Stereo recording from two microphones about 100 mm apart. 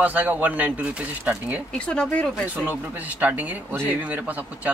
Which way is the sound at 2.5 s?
15° right (ahead or behind).